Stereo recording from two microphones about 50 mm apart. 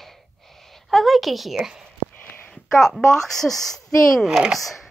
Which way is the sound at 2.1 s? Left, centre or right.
Left.